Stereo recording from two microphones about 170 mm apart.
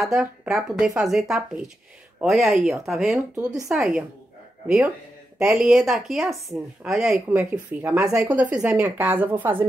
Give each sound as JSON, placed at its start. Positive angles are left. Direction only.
{"t": 0.0, "sound": "speech", "side_deg": -5}
{"t": 3.3, "sound": "speech", "side_deg": -20}
{"t": 3.7, "sound": "speech", "side_deg": -5}